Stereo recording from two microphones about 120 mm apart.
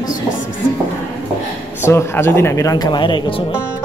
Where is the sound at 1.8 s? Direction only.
20° left (ahead or behind); by 3.5 s 50° left (ahead or behind).